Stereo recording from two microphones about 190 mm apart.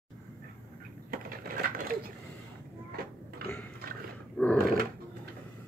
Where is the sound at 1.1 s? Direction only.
50° right (ahead or behind).